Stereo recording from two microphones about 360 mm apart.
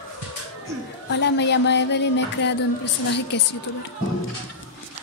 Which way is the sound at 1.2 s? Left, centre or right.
Left.